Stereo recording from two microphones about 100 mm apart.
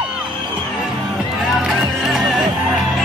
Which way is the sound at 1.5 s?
Centre (ahead or behind).